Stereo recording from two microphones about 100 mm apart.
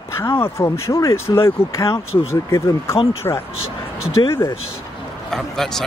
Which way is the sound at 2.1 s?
80° left.